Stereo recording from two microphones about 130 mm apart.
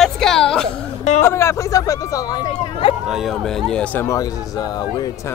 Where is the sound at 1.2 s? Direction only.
20° left (ahead or behind).